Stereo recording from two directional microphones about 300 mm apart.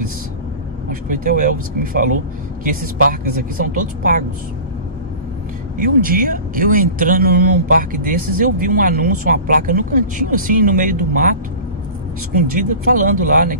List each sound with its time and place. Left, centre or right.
0.8 s speech: right
5.8 s speech: right
12.4 s speech: right